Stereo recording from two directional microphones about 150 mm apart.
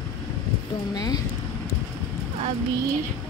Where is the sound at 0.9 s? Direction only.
25° left (ahead or behind).